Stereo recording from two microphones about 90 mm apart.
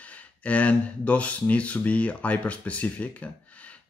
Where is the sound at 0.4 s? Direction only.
15° left (ahead or behind).